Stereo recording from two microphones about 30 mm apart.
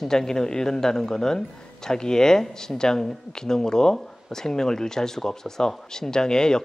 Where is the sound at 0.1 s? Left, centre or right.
Centre.